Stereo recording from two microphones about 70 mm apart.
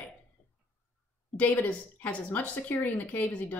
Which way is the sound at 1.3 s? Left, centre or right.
Left.